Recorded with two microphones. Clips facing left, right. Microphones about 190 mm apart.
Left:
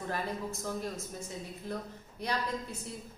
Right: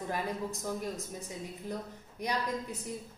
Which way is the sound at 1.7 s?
15° right (ahead or behind).